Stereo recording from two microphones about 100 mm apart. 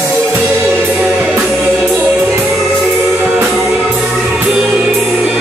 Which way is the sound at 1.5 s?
Centre (ahead or behind).